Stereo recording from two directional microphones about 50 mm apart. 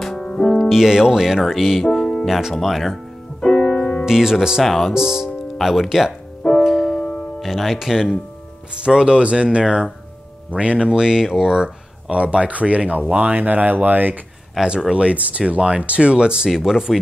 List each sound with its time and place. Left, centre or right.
0.0 s music: centre
0.6 s speech: centre
1.9 s music: centre
2.2 s speech: centre
3.5 s music: left
4.0 s speech: centre
4.6 s speech: centre
4.9 s speech: centre
6.6 s music: centre
7.3 s speech: centre
8.7 s speech: centre
10.9 s speech: centre; by 14.1 s right
14.6 s speech: centre
15.0 s speech: right; by 17.0 s centre